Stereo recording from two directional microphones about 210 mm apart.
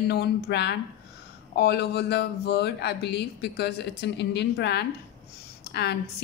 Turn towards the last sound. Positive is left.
turn(degrees=50)  # may be behind; listen again after turning